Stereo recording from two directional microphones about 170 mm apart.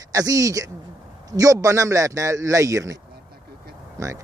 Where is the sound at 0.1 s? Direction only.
20° right (ahead or behind).